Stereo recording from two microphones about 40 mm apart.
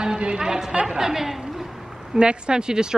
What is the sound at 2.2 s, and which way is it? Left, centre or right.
Speech, right.